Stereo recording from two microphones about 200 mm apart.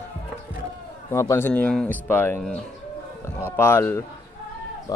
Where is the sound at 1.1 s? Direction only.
15° left (ahead or behind).